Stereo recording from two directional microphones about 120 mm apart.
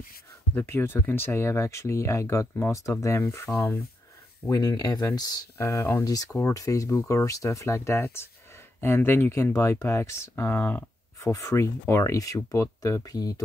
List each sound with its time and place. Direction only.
0.6 s speech: 20° left (ahead or behind)
4.5 s speech: 30° left (ahead or behind)
5.6 s speech: 20° left (ahead or behind)